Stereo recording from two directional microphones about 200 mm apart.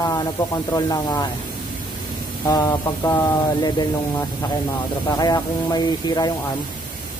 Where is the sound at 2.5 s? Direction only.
20° left (ahead or behind).